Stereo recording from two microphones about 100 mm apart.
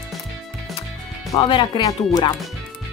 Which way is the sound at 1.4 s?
55° left (ahead or behind).